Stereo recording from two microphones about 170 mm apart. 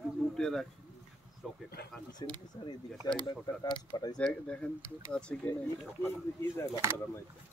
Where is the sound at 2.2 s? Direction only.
25° left (ahead or behind).